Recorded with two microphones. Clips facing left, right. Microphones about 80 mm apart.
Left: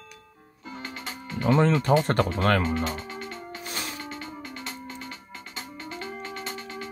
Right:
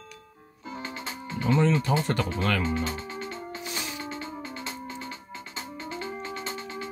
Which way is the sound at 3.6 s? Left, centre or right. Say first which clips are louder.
Left 1 dB; left.